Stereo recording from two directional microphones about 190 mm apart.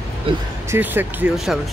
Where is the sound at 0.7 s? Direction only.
10° right (ahead or behind).